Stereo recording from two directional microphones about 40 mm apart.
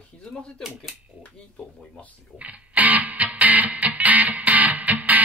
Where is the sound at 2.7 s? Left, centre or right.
Right.